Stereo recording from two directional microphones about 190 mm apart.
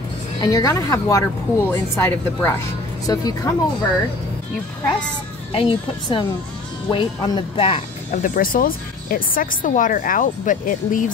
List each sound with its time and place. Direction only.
0.4 s a woman's voice: 20° left (ahead or behind)
5.5 s speech: 25° left (ahead or behind); by 11.1 s 45° left (ahead or behind)